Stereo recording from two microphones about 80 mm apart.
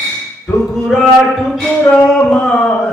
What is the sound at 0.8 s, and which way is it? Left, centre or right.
Speech, centre.